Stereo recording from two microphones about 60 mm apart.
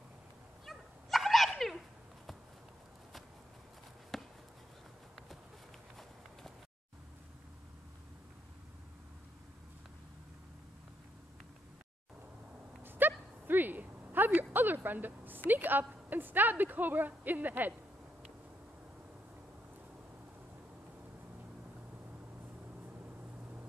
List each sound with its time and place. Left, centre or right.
0.7 s dog: centre
4.1 s chop: centre
12.8 s a sound: right